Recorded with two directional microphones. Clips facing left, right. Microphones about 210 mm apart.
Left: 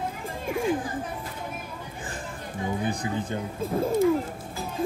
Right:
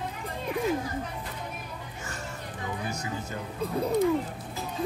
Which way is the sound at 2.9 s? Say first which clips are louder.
Left 6 dB; 30° left (ahead or behind).